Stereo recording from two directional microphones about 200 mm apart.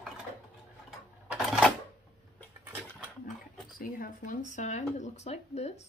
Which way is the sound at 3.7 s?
45° left (ahead or behind).